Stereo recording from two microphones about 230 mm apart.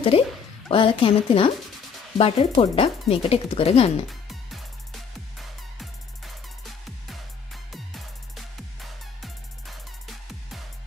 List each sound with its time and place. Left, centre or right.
0.1 s speech: left
4.1 s music: centre